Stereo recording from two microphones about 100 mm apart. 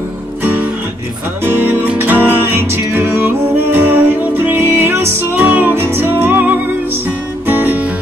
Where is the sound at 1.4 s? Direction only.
20° right (ahead or behind).